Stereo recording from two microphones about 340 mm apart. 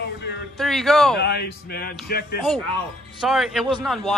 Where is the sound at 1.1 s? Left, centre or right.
Left.